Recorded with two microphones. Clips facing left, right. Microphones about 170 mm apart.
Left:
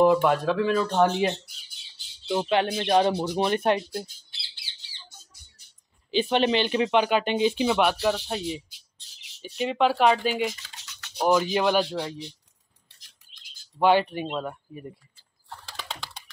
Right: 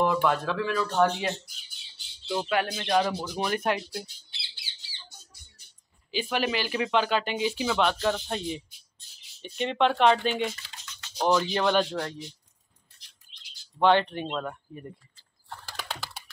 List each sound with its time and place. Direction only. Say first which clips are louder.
0.0 s speech: left 5 dB; 15° left (ahead or behind)
0.7 s speech: left 1 dB; 25° left (ahead or behind)
6.1 s speech: left 6 dB; 25° left (ahead or behind)
7.8 s speech: left 2 dB; 10° left (ahead or behind)
8.6 s bird: left 2 dB; 85° left
9.4 s speech: left 2 dB; 5° left (ahead or behind)
10.8 s typing: right 1 dB; 70° left (ahead or behind)
11.1 s speech: left 2 dB; 10° left (ahead or behind)
13.3 s bird: even; 45° left (ahead or behind)
13.7 s speech: left 1 dB; 10° left (ahead or behind)
15.7 s typing: right 1 dB; centre (ahead or behind)